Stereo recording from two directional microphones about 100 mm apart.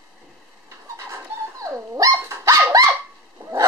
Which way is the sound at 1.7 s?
35° right (ahead or behind).